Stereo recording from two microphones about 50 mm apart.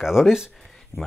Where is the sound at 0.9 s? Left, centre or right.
Left.